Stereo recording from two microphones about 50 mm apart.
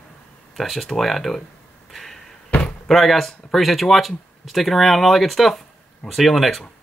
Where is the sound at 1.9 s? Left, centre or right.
Centre.